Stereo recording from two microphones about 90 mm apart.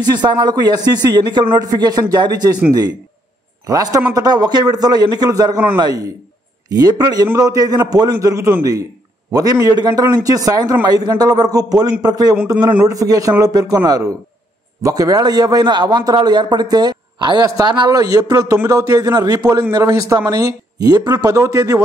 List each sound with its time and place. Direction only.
0.0 s a man's voice: 50° right (ahead or behind)
1.6 s a man's voice: 45° right (ahead or behind)
3.6 s a man's voice: 45° right (ahead or behind)